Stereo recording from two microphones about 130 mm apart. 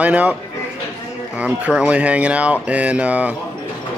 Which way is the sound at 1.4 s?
10° right (ahead or behind).